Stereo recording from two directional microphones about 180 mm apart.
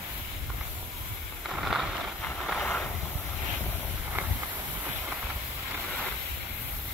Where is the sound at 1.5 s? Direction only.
Centre (ahead or behind).